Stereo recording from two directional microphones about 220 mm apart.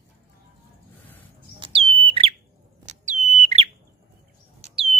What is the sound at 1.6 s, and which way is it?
Bird, 25° right (ahead or behind).